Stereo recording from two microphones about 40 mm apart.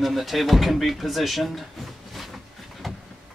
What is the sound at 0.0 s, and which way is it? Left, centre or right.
Speech, centre.